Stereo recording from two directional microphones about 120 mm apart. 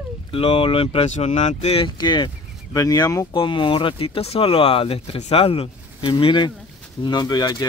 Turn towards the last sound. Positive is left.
turn(degrees=35)  # may be behind; listen again after turning